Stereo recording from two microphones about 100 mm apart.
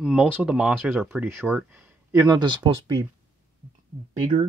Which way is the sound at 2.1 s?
40° right (ahead or behind).